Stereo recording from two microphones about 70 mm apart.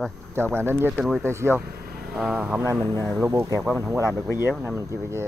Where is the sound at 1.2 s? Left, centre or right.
Right.